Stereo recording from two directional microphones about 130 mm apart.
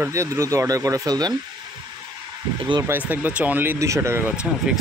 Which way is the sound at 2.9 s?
15° right (ahead or behind).